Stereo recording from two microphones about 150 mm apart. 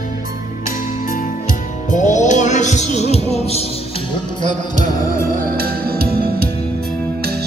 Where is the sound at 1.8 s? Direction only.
55° left (ahead or behind).